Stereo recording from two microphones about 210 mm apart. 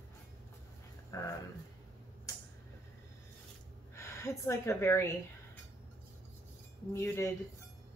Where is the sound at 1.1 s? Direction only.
15° left (ahead or behind).